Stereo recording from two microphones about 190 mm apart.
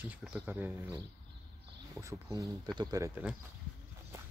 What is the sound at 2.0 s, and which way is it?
Speech, 15° right (ahead or behind).